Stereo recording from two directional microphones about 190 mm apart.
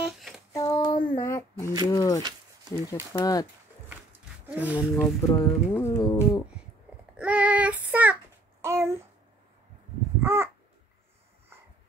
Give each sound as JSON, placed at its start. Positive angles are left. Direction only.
{"t": 0.0, "sound": "a sound", "side_deg": 0}
{"t": 0.5, "sound": "a sound", "side_deg": 15}
{"t": 1.9, "sound": "speech", "side_deg": 20}
{"t": 4.5, "sound": "speech", "side_deg": -5}
{"t": 5.0, "sound": "speech", "side_deg": 15}
{"t": 7.2, "sound": "child singing", "side_deg": -5}
{"t": 10.2, "sound": "babbling", "side_deg": -15}